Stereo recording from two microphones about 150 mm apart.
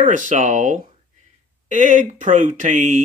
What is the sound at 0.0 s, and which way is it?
Speech, 60° right (ahead or behind).